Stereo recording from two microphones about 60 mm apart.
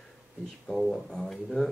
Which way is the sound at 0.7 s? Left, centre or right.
Centre.